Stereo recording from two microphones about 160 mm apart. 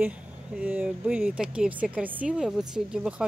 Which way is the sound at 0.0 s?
5° right (ahead or behind).